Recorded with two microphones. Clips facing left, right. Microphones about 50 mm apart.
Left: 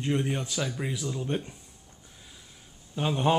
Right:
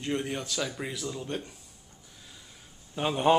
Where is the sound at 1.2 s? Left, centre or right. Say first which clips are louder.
Left 4 dB; centre.